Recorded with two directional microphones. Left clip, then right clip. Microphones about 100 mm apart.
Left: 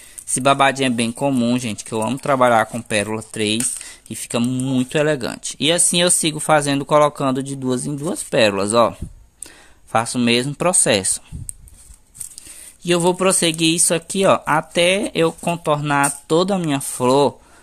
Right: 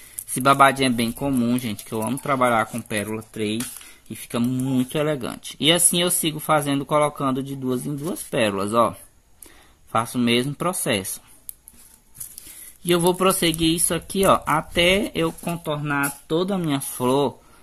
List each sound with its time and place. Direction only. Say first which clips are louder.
0.4 s speech: left 1 dB; 20° left (ahead or behind)
0.9 s speech: left 4 dB; 30° left (ahead or behind)
3.1 s speech: left 6 dB; 75° left (ahead or behind)
4.3 s speech: left 3 dB; 30° left (ahead or behind)
9.9 s speech: left 4 dB; 35° left (ahead or behind)
12.4 s speech: left 2 dB; 30° left (ahead or behind)
15.4 s speech: left 8 dB; 50° left (ahead or behind)
15.7 s speech: left 6 dB; 65° left (ahead or behind)
16.4 s speech: left 4 dB; 40° left (ahead or behind)